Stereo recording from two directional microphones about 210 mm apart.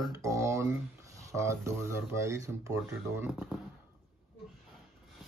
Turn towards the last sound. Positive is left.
turn(degrees=-5)  # may be behind; listen again after turning